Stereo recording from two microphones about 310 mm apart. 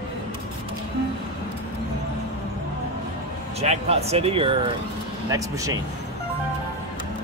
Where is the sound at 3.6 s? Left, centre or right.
Centre.